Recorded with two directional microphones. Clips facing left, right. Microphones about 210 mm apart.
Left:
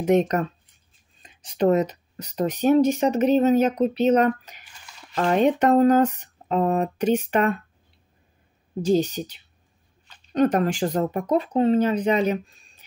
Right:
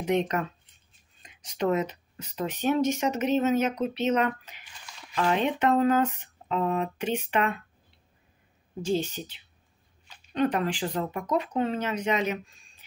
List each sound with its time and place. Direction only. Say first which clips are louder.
0.0 s speech: left 6 dB; 45° left (ahead or behind)
8.8 s speech: left 7 dB; 40° left (ahead or behind)